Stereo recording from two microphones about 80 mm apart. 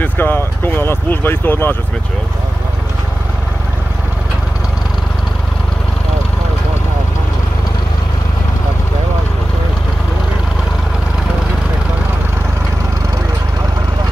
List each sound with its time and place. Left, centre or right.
0.0 s speech: left